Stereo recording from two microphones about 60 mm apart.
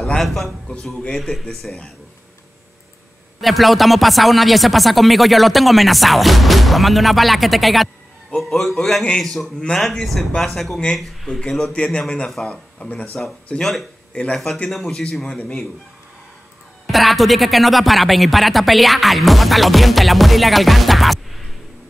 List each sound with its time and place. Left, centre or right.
0.2 s speech: centre
3.3 s speech: centre
11.7 s speech: centre
13.6 s speech: centre
16.8 s speech: centre